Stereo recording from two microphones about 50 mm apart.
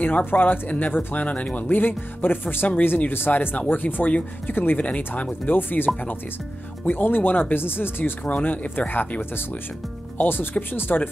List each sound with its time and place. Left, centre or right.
0.0 s speech: left
4.7 s speech: left
5.5 s speech: left
10.1 s speech: left